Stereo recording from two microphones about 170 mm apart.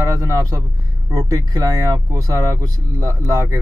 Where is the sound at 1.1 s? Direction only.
20° right (ahead or behind).